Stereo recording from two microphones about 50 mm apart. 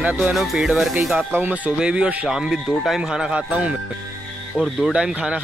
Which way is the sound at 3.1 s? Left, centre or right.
Centre.